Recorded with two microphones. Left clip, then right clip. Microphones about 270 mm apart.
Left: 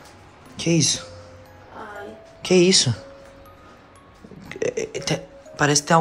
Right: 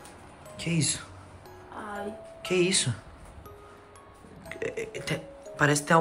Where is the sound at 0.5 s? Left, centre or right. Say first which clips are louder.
Left 10 dB; centre.